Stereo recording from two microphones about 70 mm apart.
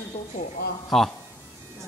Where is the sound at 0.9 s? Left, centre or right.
Centre.